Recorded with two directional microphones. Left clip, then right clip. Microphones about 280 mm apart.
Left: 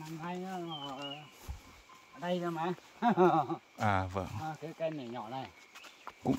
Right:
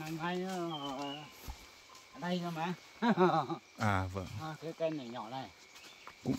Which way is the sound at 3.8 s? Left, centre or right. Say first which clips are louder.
Left 3 dB; centre.